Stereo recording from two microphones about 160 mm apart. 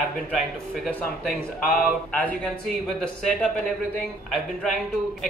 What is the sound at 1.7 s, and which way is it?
Speech, 5° left (ahead or behind).